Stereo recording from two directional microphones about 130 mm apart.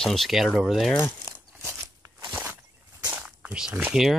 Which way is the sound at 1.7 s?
20° right (ahead or behind).